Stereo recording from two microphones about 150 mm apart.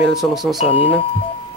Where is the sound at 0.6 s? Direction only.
35° left (ahead or behind).